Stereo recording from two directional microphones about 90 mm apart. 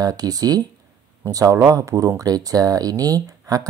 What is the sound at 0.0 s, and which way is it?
Speech, 45° right (ahead or behind).